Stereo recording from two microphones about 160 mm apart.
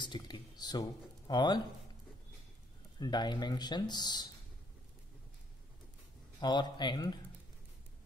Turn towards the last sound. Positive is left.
turn(degrees=25)  # may be behind; listen again after turning